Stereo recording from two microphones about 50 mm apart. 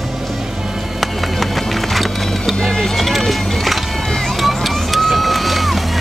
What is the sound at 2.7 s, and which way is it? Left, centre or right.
Music, centre.